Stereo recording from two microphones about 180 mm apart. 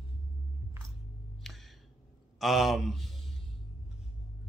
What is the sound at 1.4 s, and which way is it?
Music, centre (ahead or behind).